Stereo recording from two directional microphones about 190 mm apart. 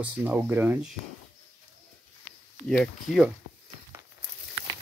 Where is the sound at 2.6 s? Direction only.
5° left (ahead or behind).